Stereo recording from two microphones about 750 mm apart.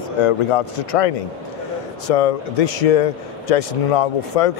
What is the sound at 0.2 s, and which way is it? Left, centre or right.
Speech, left.